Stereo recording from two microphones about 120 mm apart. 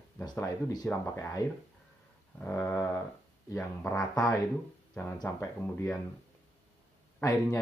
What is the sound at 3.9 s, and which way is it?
Speech, 30° left (ahead or behind).